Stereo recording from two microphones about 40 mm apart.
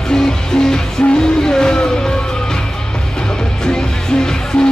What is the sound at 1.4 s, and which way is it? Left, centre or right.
Music, centre.